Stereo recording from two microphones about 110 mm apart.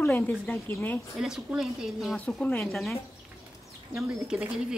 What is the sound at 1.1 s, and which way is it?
Speech, 5° right (ahead or behind).